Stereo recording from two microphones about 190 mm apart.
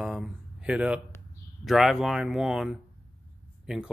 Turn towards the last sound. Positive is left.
turn(degrees=-5)  # may be behind; listen again after turning